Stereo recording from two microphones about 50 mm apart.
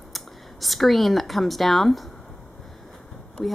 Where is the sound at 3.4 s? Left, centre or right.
Centre.